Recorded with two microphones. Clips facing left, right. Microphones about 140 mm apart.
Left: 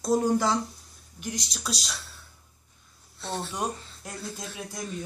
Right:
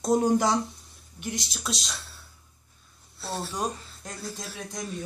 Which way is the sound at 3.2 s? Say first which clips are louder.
Even; 5° right (ahead or behind).